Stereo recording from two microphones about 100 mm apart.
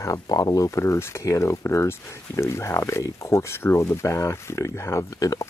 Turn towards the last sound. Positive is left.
turn(degrees=35)  # may be behind; listen again after turning